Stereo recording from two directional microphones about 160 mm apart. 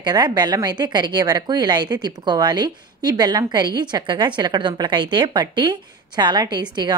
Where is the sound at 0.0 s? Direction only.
25° right (ahead or behind).